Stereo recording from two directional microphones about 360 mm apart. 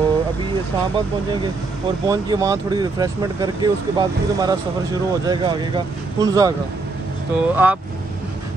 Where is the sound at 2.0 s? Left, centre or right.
Centre.